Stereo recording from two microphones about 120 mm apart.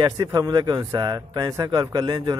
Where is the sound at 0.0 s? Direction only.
30° right (ahead or behind).